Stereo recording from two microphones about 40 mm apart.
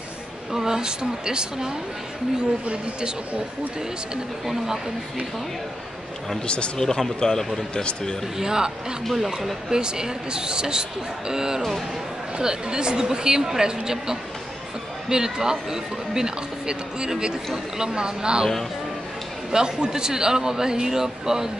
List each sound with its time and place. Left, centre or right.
0.5 s speech: centre
2.6 s a woman's voice: right
6.4 s speech: left
6.8 s speech: centre
8.4 s speech: centre
9.1 s speech: centre
9.7 s speech: centre
19.5 s speech: centre